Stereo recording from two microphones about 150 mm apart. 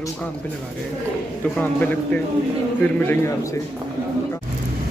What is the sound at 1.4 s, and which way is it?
A man's voice, 10° left (ahead or behind).